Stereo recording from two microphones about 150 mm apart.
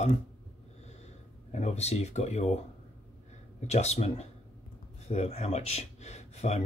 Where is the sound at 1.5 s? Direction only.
50° left (ahead or behind).